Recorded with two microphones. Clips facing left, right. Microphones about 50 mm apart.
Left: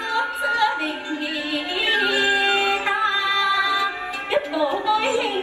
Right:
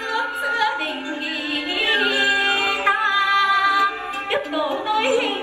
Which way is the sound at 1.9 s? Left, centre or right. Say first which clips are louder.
Even; right.